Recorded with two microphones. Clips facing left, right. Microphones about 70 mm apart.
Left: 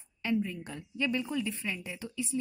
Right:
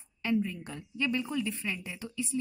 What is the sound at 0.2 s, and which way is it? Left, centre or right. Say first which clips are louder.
A woman's voice: right 1 dB; centre.